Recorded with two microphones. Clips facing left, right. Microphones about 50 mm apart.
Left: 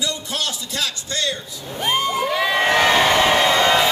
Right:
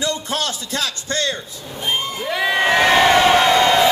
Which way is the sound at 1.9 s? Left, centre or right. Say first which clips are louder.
Left 3 dB; left.